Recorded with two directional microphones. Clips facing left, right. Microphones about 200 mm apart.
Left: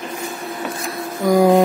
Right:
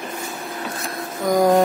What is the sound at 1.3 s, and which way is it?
Speech, 10° left (ahead or behind).